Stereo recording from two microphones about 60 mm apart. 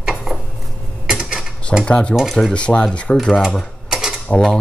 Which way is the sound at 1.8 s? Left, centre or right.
Centre.